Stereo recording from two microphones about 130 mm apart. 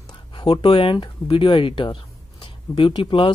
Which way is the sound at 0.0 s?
40° left (ahead or behind).